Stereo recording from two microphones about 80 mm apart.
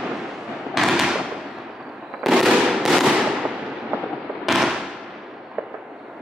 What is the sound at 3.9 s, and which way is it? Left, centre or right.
Fireworks, right.